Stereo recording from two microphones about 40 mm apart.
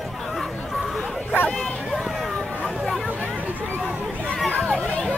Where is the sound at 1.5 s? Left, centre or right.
Centre.